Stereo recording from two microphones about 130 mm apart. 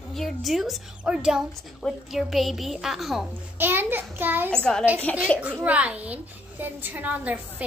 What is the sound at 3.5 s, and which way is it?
Speech, 15° right (ahead or behind).